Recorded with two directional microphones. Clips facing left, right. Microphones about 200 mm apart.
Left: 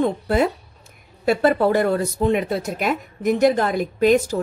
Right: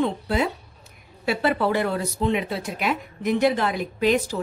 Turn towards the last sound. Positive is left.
turn(degrees=45)  # may be behind; listen again after turning